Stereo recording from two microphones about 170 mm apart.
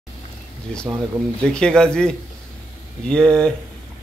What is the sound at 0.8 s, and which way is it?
Speech, 15° right (ahead or behind).